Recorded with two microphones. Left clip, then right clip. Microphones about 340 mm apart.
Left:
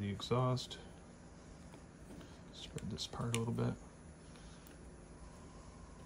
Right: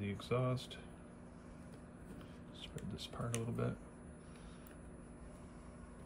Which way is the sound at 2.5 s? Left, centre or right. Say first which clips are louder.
Left 4 dB; centre.